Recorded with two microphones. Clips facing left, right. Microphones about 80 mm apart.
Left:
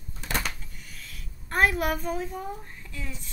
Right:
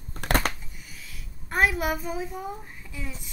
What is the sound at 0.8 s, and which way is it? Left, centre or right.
A woman's voice, centre.